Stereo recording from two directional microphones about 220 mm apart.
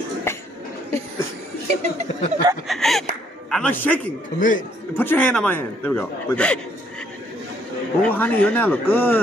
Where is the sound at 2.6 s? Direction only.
Centre (ahead or behind).